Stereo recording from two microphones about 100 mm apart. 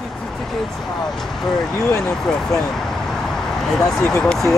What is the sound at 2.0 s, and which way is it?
Speech, 5° left (ahead or behind).